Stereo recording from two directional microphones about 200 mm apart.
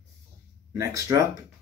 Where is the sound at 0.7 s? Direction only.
15° right (ahead or behind).